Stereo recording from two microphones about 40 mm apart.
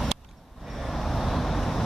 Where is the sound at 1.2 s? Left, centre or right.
Centre.